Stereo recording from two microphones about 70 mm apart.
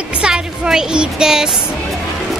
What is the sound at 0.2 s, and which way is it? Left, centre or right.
Music, centre.